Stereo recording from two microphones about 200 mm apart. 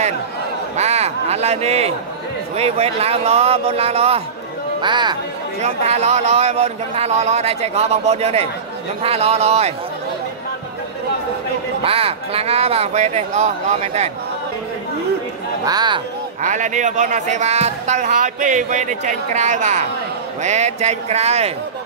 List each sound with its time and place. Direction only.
0.7 s speech: 35° right (ahead or behind)
5.6 s speech: 35° right (ahead or behind)
11.8 s speech: 30° right (ahead or behind)
15.6 s speech: 20° right (ahead or behind)
16.4 s speech: 40° right (ahead or behind)